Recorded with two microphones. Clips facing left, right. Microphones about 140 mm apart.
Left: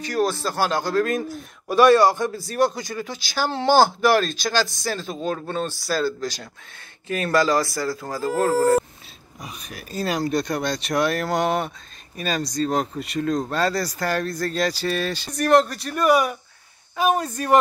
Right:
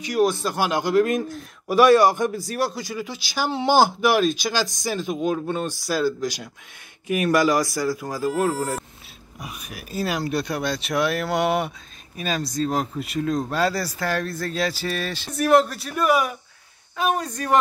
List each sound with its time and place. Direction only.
0.0 s a man's voice: 15° right (ahead or behind)
9.4 s speech: 10° right (ahead or behind)